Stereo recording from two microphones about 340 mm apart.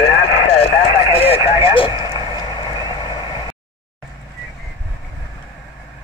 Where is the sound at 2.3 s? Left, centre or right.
Centre.